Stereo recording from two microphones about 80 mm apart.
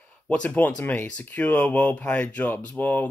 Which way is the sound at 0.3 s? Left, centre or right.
Centre.